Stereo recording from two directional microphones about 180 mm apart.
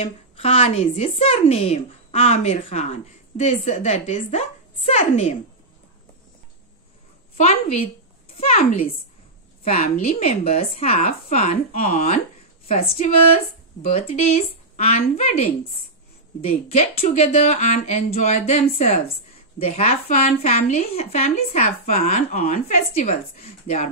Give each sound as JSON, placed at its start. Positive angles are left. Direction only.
{"t": 0.0, "sound": "a woman's voice", "side_deg": 35}
{"t": 7.3, "sound": "a woman's voice", "side_deg": 35}
{"t": 9.7, "sound": "a woman's voice", "side_deg": 40}